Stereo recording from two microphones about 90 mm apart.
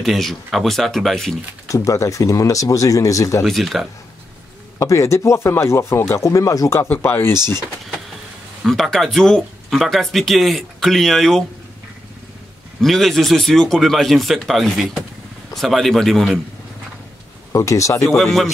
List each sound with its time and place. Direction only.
0.0 s speech: centre (ahead or behind)
1.7 s speech: 35° left (ahead or behind)
3.4 s speech: centre (ahead or behind)
4.7 s speech: 35° left (ahead or behind)
7.3 s speech: 50° right (ahead or behind)
8.6 s speech: 5° left (ahead or behind)
12.8 s speech: 5° left (ahead or behind)
17.5 s speech: 35° left (ahead or behind)
18.1 s speech: centre (ahead or behind)